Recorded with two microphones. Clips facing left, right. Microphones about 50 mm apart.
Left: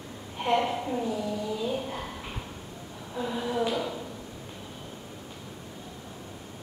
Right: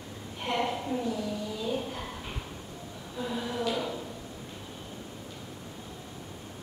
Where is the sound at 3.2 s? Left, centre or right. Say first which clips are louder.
Left 3 dB; centre.